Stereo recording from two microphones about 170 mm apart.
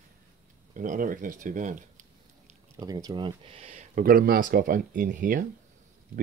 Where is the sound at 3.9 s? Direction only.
60° right (ahead or behind).